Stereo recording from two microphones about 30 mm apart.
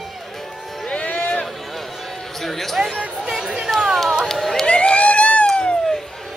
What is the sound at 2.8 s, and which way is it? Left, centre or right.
Speech, right.